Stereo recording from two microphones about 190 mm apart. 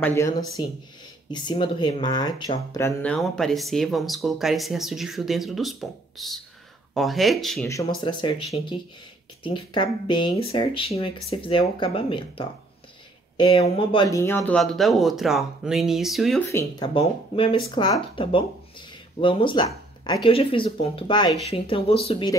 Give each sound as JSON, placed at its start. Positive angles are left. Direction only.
{"t": 0.0, "sound": "speech", "side_deg": 15}
{"t": 1.3, "sound": "speech", "side_deg": 25}
{"t": 2.8, "sound": "speech", "side_deg": 5}
{"t": 8.0, "sound": "speech", "side_deg": 25}
{"t": 14.6, "sound": "speech", "side_deg": 0}
{"t": 16.4, "sound": "speech", "side_deg": 15}
{"t": 16.9, "sound": "speech", "side_deg": 30}